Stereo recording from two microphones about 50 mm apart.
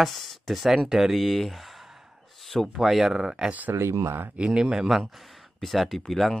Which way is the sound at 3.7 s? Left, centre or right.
Right.